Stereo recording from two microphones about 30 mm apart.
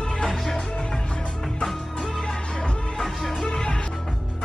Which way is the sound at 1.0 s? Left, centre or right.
Left.